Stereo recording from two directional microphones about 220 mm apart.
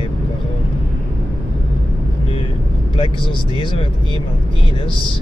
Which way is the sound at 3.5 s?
20° left (ahead or behind).